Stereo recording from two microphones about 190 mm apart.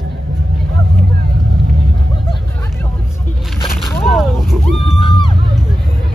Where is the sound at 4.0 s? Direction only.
Centre (ahead or behind).